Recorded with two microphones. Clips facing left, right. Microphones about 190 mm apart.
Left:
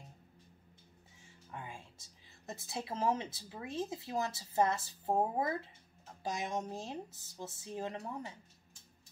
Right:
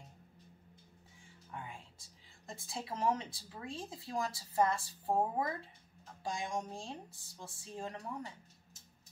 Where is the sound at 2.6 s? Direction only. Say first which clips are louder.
Left 1 dB; 25° left (ahead or behind).